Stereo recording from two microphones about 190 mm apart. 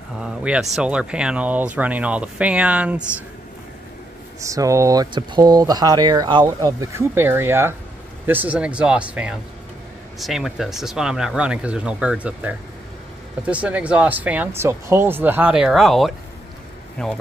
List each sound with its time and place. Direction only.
0.2 s speech: 5° right (ahead or behind)
4.4 s speech: 15° right (ahead or behind); by 17.1 s 5° left (ahead or behind)